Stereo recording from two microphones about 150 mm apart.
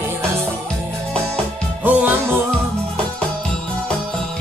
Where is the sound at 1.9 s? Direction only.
10° right (ahead or behind).